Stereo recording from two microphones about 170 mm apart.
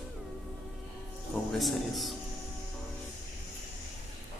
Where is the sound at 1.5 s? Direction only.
Centre (ahead or behind).